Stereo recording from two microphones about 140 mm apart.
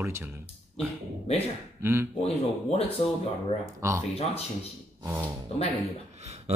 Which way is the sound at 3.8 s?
20° right (ahead or behind).